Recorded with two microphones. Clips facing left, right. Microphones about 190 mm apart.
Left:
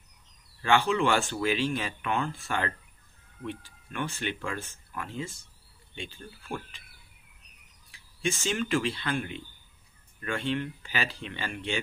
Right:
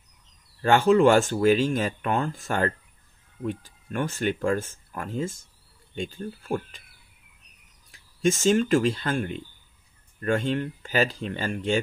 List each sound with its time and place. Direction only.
0.6 s speech: 40° right (ahead or behind)
7.9 s speech: 40° right (ahead or behind)